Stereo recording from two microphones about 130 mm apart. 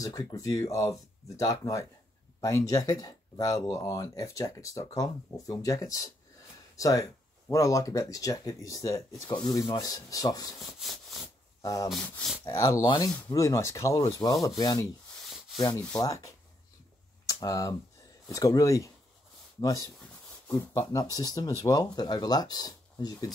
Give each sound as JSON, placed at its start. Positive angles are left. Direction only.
{"t": 0.0, "sound": "speech", "side_deg": 25}
{"t": 10.7, "sound": "a sound", "side_deg": 0}
{"t": 11.6, "sound": "speech", "side_deg": 25}
{"t": 11.9, "sound": "speech", "side_deg": 5}
{"t": 12.4, "sound": "speech", "side_deg": 25}
{"t": 15.2, "sound": "rub", "side_deg": 0}
{"t": 16.0, "sound": "speech", "side_deg": 25}